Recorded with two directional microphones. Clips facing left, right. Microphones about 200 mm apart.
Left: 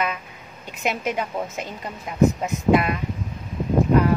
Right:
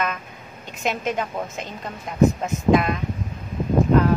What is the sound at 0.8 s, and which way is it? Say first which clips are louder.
Speech: even; 10° left (ahead or behind).